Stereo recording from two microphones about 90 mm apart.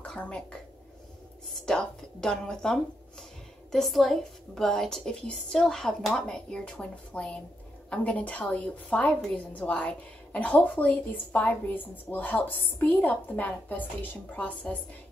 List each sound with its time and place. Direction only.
0.0 s a woman's voice: 10° left (ahead or behind)